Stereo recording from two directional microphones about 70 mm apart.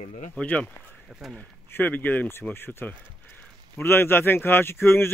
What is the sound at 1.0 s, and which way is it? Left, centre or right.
Speech, centre.